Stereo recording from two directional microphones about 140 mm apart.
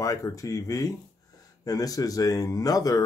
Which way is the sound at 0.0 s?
25° left (ahead or behind).